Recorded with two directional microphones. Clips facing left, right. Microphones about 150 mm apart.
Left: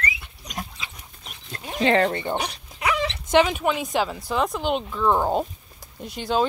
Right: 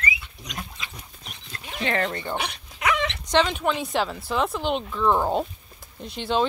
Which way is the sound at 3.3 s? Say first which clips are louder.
Left 3 dB; 5° left (ahead or behind).